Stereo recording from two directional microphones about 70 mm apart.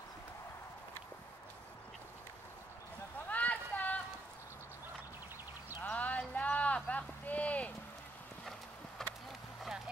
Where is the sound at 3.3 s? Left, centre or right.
Left.